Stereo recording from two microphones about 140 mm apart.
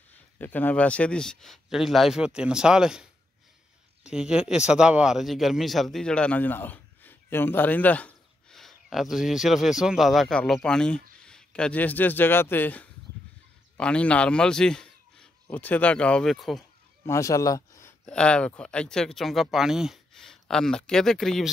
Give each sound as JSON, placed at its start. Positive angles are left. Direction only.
{"t": 0.1, "sound": "a man's voice", "side_deg": 10}
{"t": 17.0, "sound": "speech", "side_deg": 20}
{"t": 18.0, "sound": "speech", "side_deg": 5}